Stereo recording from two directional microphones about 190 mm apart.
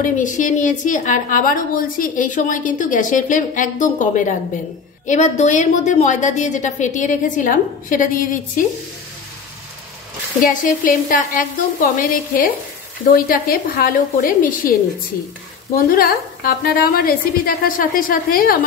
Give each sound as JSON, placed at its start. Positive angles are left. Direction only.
{"t": 0.0, "sound": "a woman's voice", "side_deg": 40}
{"t": 10.4, "sound": "a woman's voice", "side_deg": 45}
{"t": 15.7, "sound": "a woman's voice", "side_deg": 50}